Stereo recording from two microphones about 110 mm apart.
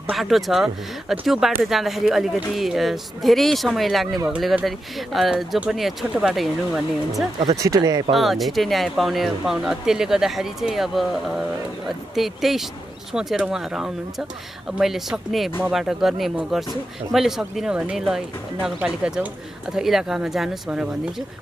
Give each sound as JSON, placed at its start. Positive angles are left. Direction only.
{"t": 0.1, "sound": "speech", "side_deg": 0}
{"t": 7.5, "sound": "speech", "side_deg": -30}
{"t": 8.1, "sound": "speech", "side_deg": 0}